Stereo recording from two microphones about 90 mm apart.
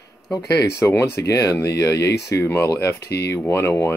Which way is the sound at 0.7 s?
25° left (ahead or behind).